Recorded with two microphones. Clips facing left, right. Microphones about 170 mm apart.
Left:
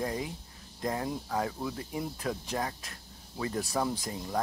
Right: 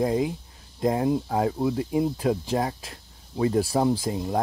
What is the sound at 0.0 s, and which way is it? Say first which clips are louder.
Speech: right 10 dB; 25° right (ahead or behind).